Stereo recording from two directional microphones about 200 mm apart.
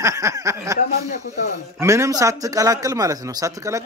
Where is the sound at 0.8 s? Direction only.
45° left (ahead or behind).